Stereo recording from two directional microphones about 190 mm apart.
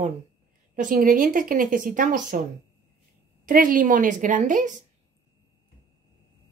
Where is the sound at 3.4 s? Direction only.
45° right (ahead or behind).